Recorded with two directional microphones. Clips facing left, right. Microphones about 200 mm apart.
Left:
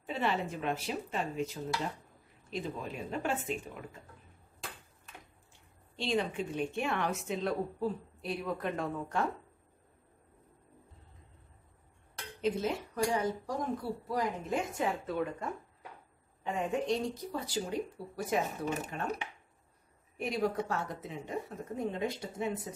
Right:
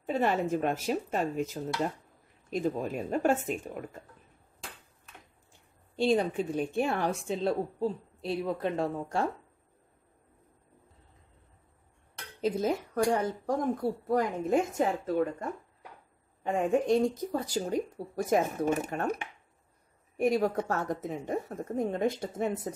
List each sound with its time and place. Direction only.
0.0 s speech: 45° right (ahead or behind)
5.9 s a woman's voice: 40° right (ahead or behind)
12.4 s speech: 40° right (ahead or behind)
16.4 s speech: 50° right (ahead or behind)